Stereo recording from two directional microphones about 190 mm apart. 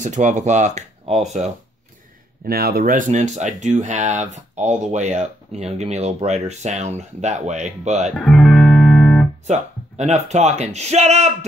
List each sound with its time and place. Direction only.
0.0 s speech: 40° right (ahead or behind)
2.4 s speech: 55° right (ahead or behind); by 8.1 s 35° right (ahead or behind)
8.2 s music: centre (ahead or behind)
9.5 s speech: 35° right (ahead or behind)